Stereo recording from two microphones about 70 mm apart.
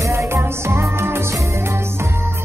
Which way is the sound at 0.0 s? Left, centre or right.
Right.